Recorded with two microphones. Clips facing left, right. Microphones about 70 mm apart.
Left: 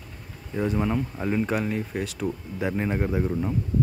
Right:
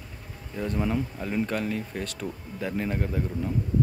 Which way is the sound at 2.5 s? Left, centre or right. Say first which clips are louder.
Left 2 dB; centre.